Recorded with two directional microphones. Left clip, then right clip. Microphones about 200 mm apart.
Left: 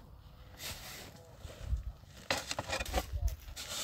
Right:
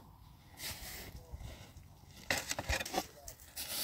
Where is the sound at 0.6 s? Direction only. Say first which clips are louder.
Left 1 dB; centre (ahead or behind).